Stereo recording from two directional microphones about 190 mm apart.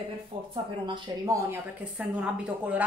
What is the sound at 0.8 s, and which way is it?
Speech, 25° right (ahead or behind).